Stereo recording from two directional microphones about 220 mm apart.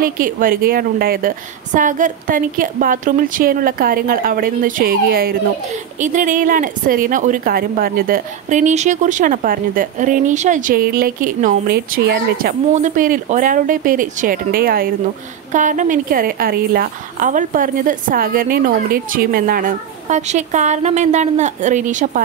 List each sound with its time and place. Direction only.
0.0 s a woman's voice: 40° right (ahead or behind)